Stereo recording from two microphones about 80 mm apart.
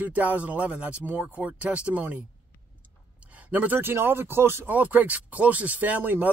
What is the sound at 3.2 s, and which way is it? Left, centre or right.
Speech, centre.